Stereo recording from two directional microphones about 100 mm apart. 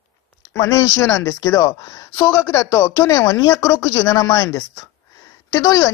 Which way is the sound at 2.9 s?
40° left (ahead or behind).